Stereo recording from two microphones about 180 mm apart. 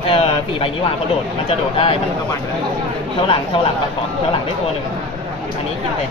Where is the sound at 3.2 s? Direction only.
30° left (ahead or behind).